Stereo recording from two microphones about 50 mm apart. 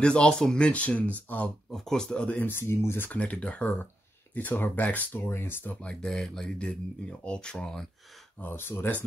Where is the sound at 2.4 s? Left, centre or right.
Left.